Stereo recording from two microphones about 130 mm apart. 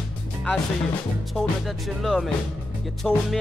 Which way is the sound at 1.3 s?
Centre (ahead or behind).